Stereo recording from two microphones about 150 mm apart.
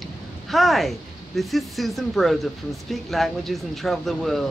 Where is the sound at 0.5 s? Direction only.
Centre (ahead or behind).